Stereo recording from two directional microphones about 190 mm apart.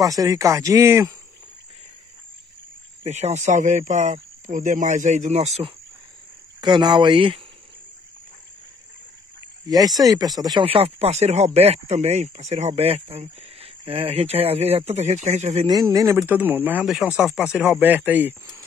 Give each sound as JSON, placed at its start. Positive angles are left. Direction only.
{"t": 0.0, "sound": "speech", "side_deg": -20}
{"t": 3.0, "sound": "speech", "side_deg": -35}
{"t": 6.6, "sound": "speech", "side_deg": -25}
{"t": 9.7, "sound": "speech", "side_deg": -20}
{"t": 15.7, "sound": "speech", "side_deg": -20}